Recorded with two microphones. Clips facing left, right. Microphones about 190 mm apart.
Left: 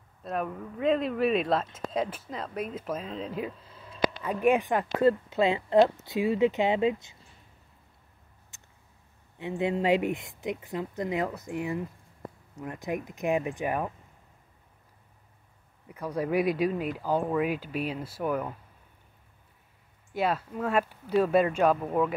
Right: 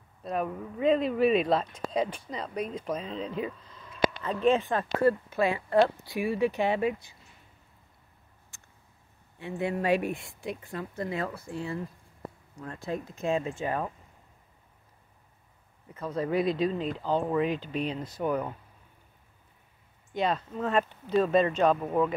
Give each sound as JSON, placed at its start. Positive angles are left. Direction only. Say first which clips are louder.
{"t": 0.2, "sound": "speech", "louder": "right 1 dB", "side_deg": 0}
{"t": 8.5, "sound": "a sound", "louder": "even", "side_deg": 20}
{"t": 9.4, "sound": "speech", "louder": "left 2 dB", "side_deg": 20}
{"t": 15.9, "sound": "speech", "louder": "left 1 dB", "side_deg": 10}
{"t": 20.2, "sound": "speech", "louder": "even", "side_deg": 5}